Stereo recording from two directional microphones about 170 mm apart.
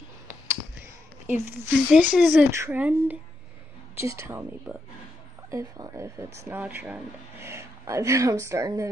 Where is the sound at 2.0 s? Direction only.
10° right (ahead or behind).